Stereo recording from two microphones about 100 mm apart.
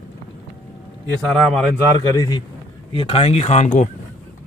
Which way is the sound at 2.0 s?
40° left (ahead or behind).